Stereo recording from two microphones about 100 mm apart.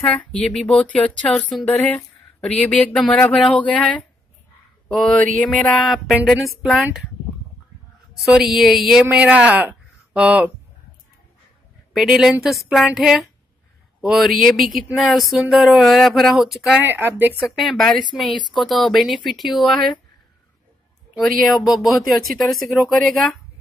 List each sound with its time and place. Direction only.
0.0 s speech: 10° left (ahead or behind)
1.3 s speech: centre (ahead or behind)
1.7 s speech: 15° left (ahead or behind)
6.2 s speech: centre (ahead or behind)
8.3 s speech: 5° right (ahead or behind)
11.9 s speech: 5° right (ahead or behind)
16.7 s speech: 20° right (ahead or behind)
17.5 s speech: centre (ahead or behind)
21.2 s speech: centre (ahead or behind)